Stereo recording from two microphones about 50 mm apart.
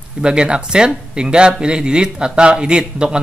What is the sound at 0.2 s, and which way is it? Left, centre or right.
Speech, centre.